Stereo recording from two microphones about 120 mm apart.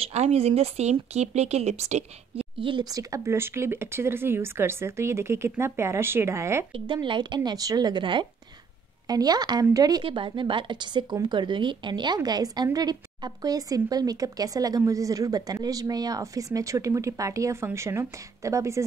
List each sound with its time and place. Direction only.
0.0 s speech: 60° right (ahead or behind)
2.6 s speech: 40° right (ahead or behind); by 6.6 s 25° right (ahead or behind)
6.7 s speech: 45° right (ahead or behind)
10.0 s speech: 45° right (ahead or behind); by 18.9 s 25° right (ahead or behind)